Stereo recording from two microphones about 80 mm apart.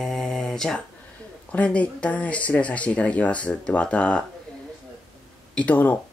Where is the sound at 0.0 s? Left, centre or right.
Centre.